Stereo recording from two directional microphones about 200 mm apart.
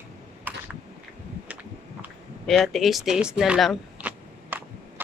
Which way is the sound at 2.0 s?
5° right (ahead or behind).